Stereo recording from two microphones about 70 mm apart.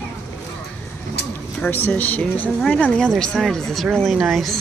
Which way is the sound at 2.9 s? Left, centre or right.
Centre.